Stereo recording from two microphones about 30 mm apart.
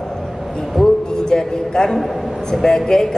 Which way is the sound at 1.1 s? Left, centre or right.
Left.